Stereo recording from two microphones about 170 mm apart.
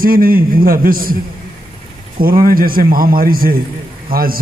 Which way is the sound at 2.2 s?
55° right (ahead or behind).